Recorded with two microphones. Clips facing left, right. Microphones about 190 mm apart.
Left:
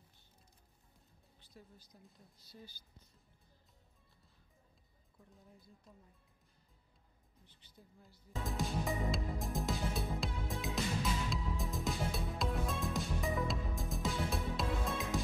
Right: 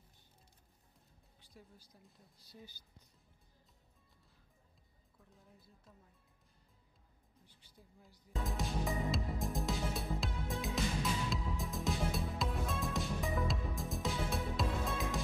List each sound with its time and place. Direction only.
1.4 s music: 15° right (ahead or behind)
1.9 s speech: centre (ahead or behind)
2.4 s speech: 15° right (ahead or behind)
7.4 s speech: 10° right (ahead or behind)
8.5 s music: centre (ahead or behind)